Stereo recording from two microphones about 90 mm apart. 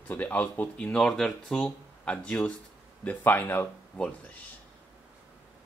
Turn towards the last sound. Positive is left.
turn(degrees=15)  # may be behind; listen again after turning